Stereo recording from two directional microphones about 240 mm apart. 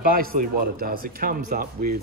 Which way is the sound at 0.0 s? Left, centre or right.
Right.